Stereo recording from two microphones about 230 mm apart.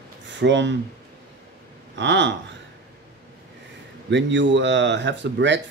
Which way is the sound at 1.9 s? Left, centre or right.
Right.